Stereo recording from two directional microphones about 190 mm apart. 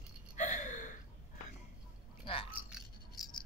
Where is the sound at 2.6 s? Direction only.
Centre (ahead or behind).